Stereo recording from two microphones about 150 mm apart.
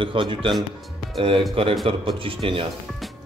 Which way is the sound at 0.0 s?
35° right (ahead or behind).